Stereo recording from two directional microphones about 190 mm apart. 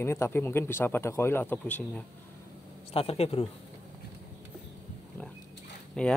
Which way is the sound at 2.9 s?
30° left (ahead or behind).